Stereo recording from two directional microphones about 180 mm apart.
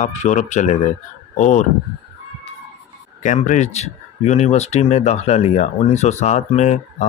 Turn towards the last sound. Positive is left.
turn(degrees=40)  # may be behind; listen again after turning